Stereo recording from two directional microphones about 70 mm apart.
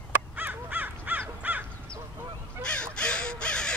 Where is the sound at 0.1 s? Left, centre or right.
Right.